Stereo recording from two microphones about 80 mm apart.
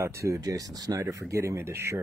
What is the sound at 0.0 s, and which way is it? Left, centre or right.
Speech, right.